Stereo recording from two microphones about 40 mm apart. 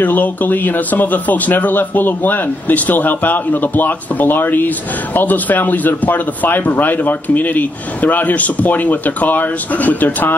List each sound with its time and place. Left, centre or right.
0.0 s a man's voice: left